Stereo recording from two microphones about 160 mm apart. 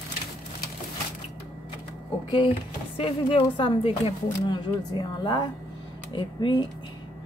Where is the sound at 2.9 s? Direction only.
35° left (ahead or behind).